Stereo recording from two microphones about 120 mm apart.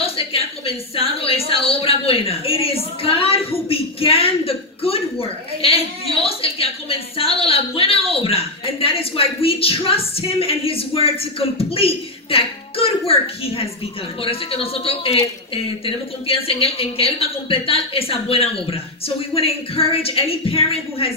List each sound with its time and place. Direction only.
0.0 s a woman's voice: 55° left (ahead or behind)